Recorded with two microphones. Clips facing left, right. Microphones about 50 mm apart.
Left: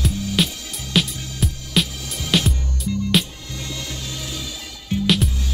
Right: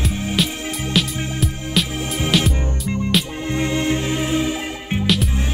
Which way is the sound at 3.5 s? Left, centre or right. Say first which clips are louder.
Right 13 dB; right.